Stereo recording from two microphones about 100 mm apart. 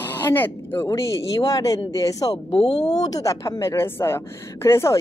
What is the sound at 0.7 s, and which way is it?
Speech, 30° left (ahead or behind).